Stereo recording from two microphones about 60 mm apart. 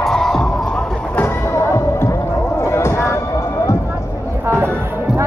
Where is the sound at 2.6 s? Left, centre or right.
Left.